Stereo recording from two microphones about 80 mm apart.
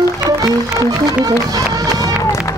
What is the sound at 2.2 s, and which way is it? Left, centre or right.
Run, left.